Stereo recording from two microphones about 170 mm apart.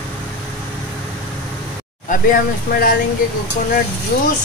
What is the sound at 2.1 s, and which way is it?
Speech, 55° left (ahead or behind).